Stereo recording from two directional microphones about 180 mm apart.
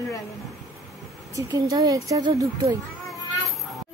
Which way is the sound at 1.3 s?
20° right (ahead or behind).